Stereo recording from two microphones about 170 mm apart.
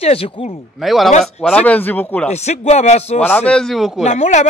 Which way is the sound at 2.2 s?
40° left (ahead or behind).